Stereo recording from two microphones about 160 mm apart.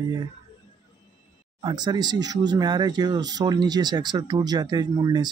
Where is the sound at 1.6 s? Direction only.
25° right (ahead or behind).